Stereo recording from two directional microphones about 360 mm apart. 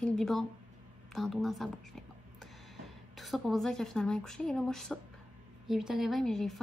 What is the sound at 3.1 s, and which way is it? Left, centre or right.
A woman's voice, centre.